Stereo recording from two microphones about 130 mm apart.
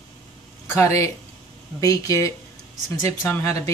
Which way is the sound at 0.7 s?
25° left (ahead or behind).